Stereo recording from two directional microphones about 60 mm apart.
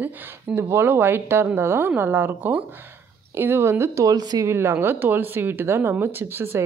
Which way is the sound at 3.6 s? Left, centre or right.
Right.